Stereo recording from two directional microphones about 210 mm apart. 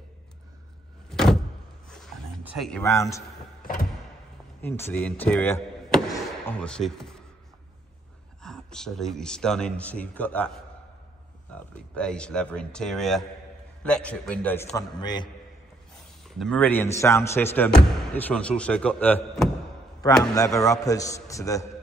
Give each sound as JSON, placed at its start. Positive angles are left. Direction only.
{"t": 1.1, "sound": "door", "side_deg": 0}
{"t": 2.4, "sound": "speech", "side_deg": 0}
{"t": 2.8, "sound": "speech", "side_deg": 15}
{"t": 4.6, "sound": "speech", "side_deg": 10}
{"t": 8.4, "sound": "speech", "side_deg": 5}
{"t": 11.5, "sound": "speech", "side_deg": 5}
{"t": 14.8, "sound": "a man's voice", "side_deg": 20}
{"t": 16.3, "sound": "speech", "side_deg": 5}
{"t": 20.3, "sound": "speech", "side_deg": 15}